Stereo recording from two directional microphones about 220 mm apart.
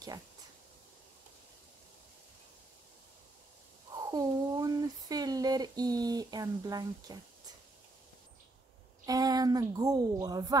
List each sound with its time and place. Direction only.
3.9 s speech: 15° right (ahead or behind)
9.0 s speech: 15° right (ahead or behind)